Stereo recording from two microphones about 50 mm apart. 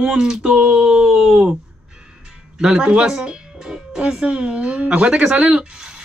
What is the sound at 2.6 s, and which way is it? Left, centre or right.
Speech, centre.